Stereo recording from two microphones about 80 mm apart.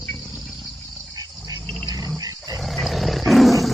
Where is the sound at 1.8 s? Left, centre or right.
Right.